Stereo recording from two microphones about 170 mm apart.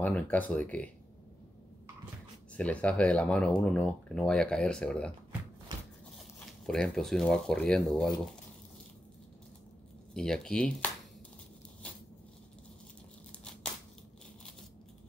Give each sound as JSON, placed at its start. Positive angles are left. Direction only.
{"t": 0.0, "sound": "speech", "side_deg": 10}
{"t": 2.5, "sound": "speech", "side_deg": 10}
{"t": 6.1, "sound": "speech", "side_deg": 0}
{"t": 10.1, "sound": "speech", "side_deg": 5}
{"t": 11.8, "sound": "a sound", "side_deg": 5}
{"t": 13.4, "sound": "tearing", "side_deg": 5}